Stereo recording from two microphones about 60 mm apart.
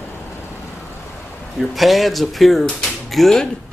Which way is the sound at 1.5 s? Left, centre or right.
Centre.